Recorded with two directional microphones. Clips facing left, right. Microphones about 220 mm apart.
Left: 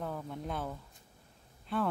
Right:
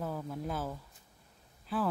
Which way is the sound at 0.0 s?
5° right (ahead or behind).